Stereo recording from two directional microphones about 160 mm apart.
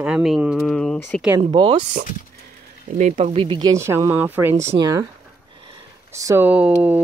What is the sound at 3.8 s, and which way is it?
Speech, 15° right (ahead or behind).